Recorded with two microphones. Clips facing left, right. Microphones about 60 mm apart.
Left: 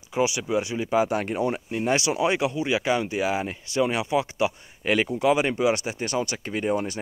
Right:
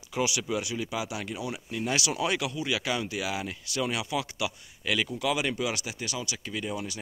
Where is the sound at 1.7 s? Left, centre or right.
Left.